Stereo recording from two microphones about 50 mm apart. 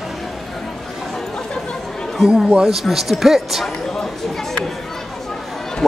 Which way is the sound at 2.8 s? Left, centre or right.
Centre.